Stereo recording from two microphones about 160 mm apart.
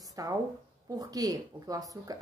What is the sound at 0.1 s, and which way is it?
A woman's voice, 20° right (ahead or behind).